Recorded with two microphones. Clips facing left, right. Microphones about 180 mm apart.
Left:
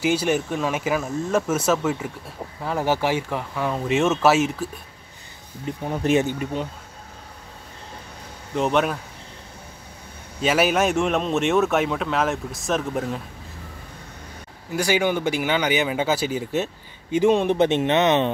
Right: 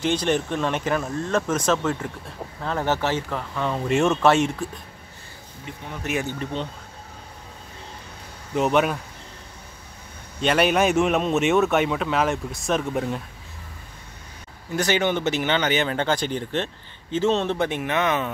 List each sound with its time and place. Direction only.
0.0 s speech: 10° left (ahead or behind)
5.9 s speech: 30° left (ahead or behind)
6.2 s speech: 10° left (ahead or behind)
8.5 s a man's voice: centre (ahead or behind)
10.4 s a man's voice: 5° left (ahead or behind)
14.7 s speech: 10° left (ahead or behind); by 18.3 s 25° left (ahead or behind)